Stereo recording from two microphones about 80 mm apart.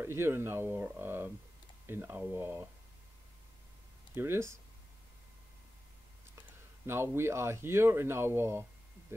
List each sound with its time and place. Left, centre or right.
0.0 s speech: right
4.1 s speech: right
6.8 s speech: right